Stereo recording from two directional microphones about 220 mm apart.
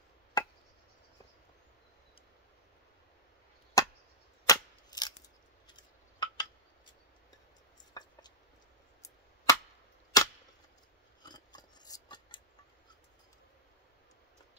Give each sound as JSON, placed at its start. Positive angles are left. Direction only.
{"t": 0.4, "sound": "chop", "side_deg": 20}
{"t": 3.8, "sound": "chop", "side_deg": 15}
{"t": 4.5, "sound": "scissors", "side_deg": 20}
{"t": 5.7, "sound": "a sound", "side_deg": 20}
{"t": 8.0, "sound": "chopping", "side_deg": 15}
{"t": 10.1, "sound": "cap gun", "side_deg": 15}
{"t": 11.2, "sound": "scissors", "side_deg": 20}